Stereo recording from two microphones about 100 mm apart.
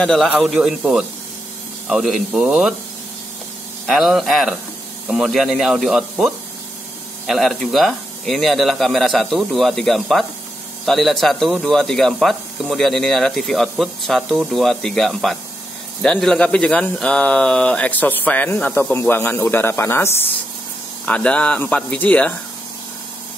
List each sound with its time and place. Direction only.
0.0 s speech: 5° left (ahead or behind)
3.8 s speech: centre (ahead or behind); by 20.2 s 25° left (ahead or behind)
21.0 s speech: 10° left (ahead or behind)